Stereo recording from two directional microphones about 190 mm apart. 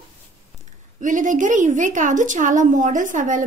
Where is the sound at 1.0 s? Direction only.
40° right (ahead or behind).